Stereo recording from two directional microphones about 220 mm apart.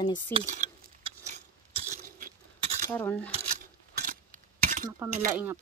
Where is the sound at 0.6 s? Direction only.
35° right (ahead or behind).